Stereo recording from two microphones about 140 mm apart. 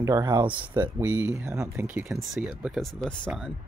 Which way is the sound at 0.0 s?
25° right (ahead or behind).